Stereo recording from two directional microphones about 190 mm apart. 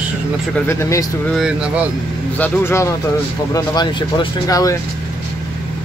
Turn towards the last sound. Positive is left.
turn(degrees=20)  # may be behind; listen again after turning